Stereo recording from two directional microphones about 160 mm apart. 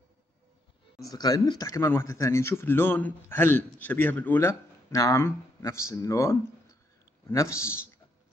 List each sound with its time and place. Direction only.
1.0 s speech: 25° left (ahead or behind)